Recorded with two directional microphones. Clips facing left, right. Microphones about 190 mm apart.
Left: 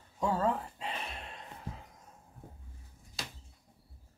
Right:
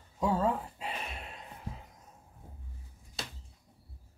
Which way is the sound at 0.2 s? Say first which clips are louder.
Right 1 dB; 5° right (ahead or behind).